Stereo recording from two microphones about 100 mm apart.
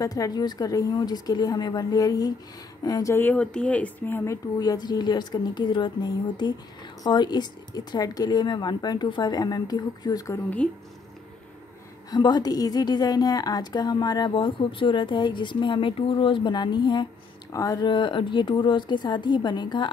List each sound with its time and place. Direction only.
0.0 s a woman's voice: 35° left (ahead or behind)
3.2 s speech: 15° left (ahead or behind)
4.6 s speech: 40° left (ahead or behind)
10.6 s speech: 10° left (ahead or behind)
12.1 s a woman's voice: 40° left (ahead or behind)
14.3 s speech: 60° left (ahead or behind); by 17.8 s 35° left (ahead or behind)
17.8 s speech: 55° left (ahead or behind)